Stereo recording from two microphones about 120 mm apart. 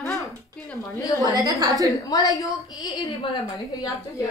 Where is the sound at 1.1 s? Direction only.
30° right (ahead or behind).